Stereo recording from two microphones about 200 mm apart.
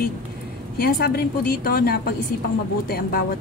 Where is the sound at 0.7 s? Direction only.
50° left (ahead or behind).